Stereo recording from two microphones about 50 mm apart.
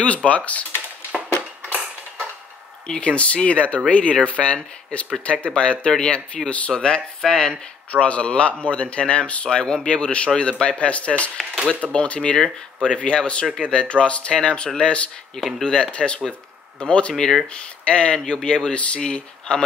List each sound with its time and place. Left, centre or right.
0.0 s speech: left
2.9 s speech: left
17.1 s speech: centre
17.5 s speech: left